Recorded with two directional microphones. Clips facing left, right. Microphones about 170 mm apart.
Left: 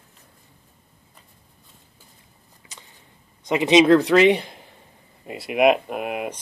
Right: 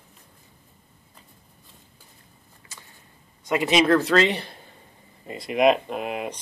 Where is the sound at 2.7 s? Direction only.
20° left (ahead or behind).